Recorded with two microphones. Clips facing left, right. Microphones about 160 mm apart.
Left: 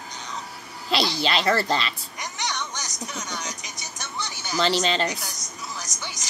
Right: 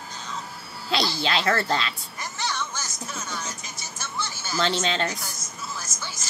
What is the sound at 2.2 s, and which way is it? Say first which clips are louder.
Vehicle: right 1 dB; 15° left (ahead or behind).